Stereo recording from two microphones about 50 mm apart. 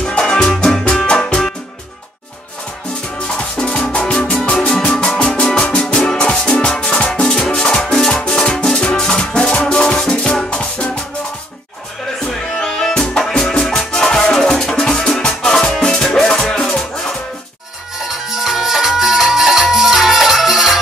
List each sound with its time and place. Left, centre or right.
0.0 s music: centre
0.7 s music: centre
3.3 s music: centre
12.5 s music: centre
18.0 s music: centre